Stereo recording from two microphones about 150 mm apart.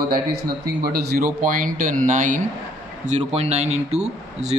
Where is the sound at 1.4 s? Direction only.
65° right (ahead or behind).